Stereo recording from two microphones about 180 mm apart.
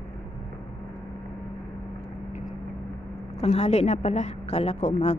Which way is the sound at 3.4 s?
35° left (ahead or behind).